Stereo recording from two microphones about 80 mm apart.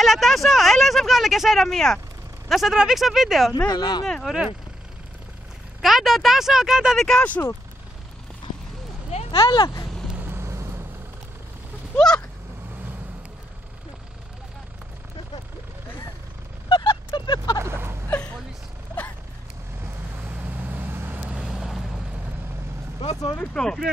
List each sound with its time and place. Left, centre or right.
0.0 s speech: centre
3.6 s speech: left
4.0 s speech: centre
5.8 s speech: centre
7.1 s speech: centre
9.3 s speech: left
10.2 s vehicle: right
16.6 s a sound: left
17.6 s vehicle: right
20.2 s vehicle: right
21.2 s vehicle: centre
23.5 s speech: centre